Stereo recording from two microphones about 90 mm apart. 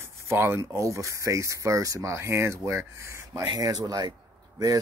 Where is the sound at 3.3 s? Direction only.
50° right (ahead or behind).